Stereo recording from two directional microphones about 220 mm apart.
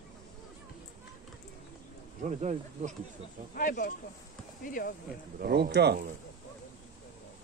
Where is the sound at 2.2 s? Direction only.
30° right (ahead or behind).